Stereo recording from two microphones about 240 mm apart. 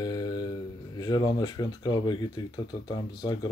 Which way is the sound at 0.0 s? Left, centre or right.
Centre.